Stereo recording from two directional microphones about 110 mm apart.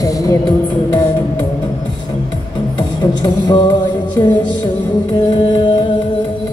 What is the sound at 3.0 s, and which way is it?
Music, 40° left (ahead or behind).